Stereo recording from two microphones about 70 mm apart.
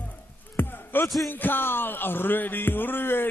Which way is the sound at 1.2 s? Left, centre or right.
Left.